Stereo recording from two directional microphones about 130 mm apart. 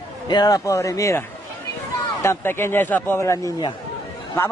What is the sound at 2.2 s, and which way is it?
A man's voice, 20° left (ahead or behind).